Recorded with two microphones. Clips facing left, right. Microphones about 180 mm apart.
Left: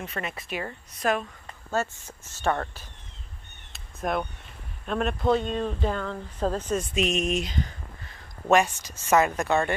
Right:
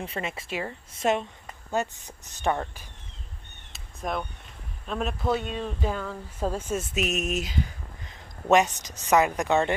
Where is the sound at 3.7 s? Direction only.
Centre (ahead or behind).